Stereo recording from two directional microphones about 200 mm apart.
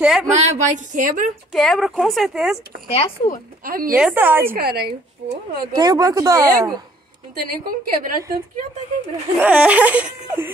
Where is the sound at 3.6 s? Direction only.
45° right (ahead or behind).